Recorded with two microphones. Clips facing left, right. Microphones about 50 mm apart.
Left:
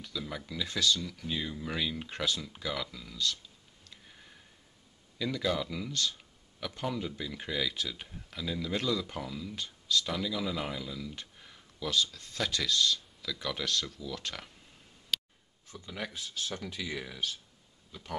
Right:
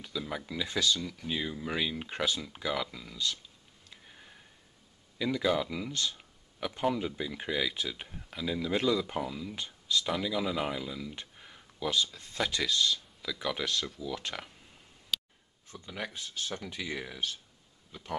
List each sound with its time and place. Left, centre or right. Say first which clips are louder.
0.2 s speech: right 2 dB; centre
3.9 s a sound: right 2 dB; centre
5.2 s speech: right 3 dB; centre
15.9 s speech: even; centre